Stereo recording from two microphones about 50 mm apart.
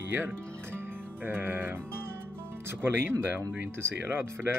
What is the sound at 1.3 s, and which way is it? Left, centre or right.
Speech, right.